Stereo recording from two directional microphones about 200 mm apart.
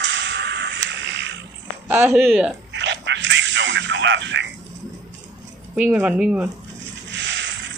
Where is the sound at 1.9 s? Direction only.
10° right (ahead or behind).